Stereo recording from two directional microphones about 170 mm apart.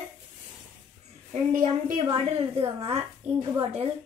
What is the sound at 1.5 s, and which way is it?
Speech, 50° right (ahead or behind).